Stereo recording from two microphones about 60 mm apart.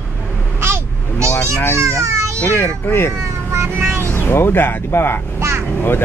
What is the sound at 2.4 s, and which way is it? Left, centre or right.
Speech, left.